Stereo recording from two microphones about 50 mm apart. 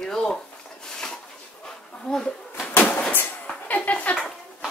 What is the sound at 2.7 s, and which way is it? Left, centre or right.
Vehicle, left.